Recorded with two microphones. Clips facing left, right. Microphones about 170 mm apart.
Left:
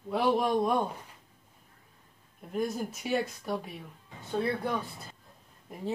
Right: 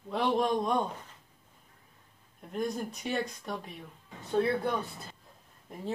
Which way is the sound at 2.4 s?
5° left (ahead or behind).